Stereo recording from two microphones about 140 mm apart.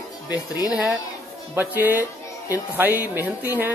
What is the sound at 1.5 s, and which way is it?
Speech, 15° right (ahead or behind).